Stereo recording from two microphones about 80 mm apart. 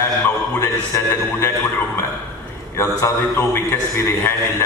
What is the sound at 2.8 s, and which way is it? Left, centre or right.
A man's voice, left.